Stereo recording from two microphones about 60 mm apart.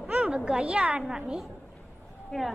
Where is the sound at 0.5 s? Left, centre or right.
Centre.